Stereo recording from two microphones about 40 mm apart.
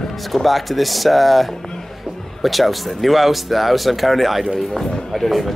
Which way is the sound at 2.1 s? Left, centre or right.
Centre.